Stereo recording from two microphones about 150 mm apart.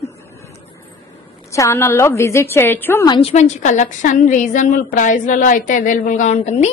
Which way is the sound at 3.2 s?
45° left (ahead or behind).